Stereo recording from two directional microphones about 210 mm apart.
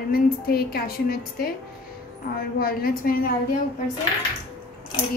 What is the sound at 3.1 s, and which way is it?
Speech, 45° left (ahead or behind).